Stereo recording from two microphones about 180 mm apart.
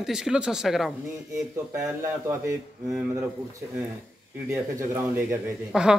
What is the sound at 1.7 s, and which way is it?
Speech, 15° right (ahead or behind).